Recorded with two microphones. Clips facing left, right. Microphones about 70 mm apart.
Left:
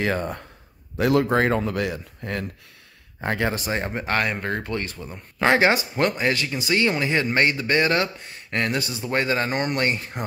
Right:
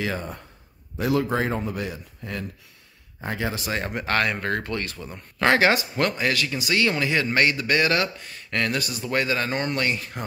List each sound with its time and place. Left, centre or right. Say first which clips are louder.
0.0 s a man's voice: left 4 dB; left
1.5 s speech: left 5 dB; left
3.7 s speech: even; left
9.8 s speech: left 1 dB; left